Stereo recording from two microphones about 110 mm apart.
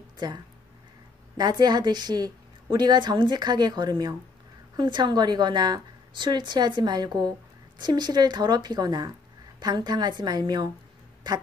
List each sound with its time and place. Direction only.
1.3 s a woman's voice: 40° right (ahead or behind)